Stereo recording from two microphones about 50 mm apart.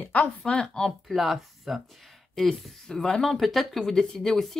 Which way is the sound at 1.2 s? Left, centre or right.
Centre.